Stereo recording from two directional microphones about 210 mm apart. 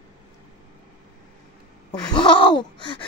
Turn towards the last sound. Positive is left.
turn(degrees=20)  # may be behind; listen again after turning